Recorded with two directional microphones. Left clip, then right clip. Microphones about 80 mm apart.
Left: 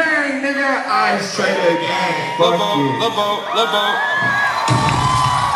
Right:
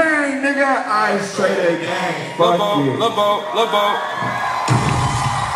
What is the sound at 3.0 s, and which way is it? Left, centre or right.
Speech, left.